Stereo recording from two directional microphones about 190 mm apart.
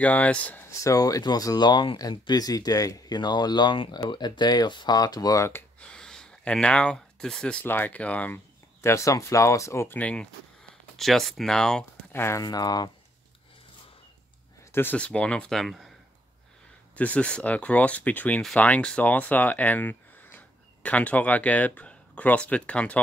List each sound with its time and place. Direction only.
0.0 s speech: 5° left (ahead or behind)
14.7 s speech: 10° left (ahead or behind)
16.9 s speech: 5° left (ahead or behind)